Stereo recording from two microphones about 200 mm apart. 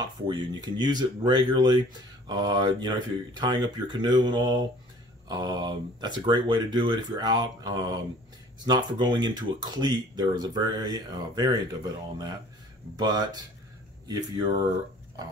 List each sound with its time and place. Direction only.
0.3 s speech: 20° right (ahead or behind)